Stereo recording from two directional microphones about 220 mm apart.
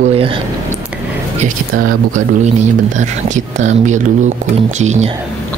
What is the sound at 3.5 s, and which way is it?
Speech, 35° right (ahead or behind).